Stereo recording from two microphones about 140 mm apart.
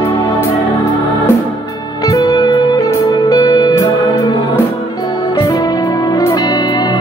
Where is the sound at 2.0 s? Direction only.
25° left (ahead or behind).